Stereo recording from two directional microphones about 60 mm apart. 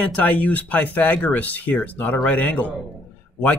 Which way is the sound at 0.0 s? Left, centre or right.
Left.